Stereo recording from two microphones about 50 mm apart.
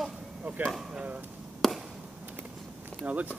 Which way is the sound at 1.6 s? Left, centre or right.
Centre.